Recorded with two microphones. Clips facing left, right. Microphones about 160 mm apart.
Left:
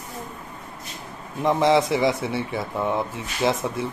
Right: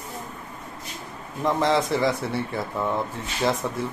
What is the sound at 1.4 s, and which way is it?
A man's voice, 15° left (ahead or behind).